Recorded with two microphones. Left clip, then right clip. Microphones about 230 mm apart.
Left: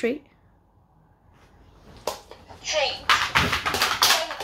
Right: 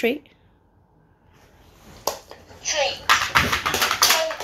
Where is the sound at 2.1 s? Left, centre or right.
Right.